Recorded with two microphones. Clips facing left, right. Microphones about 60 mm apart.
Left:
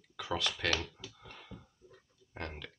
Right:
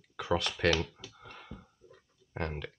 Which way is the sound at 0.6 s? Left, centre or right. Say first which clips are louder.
Right 8 dB; right.